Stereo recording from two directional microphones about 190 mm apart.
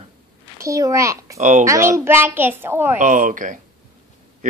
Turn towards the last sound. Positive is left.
turn(degrees=-45)  # may be behind; listen again after turning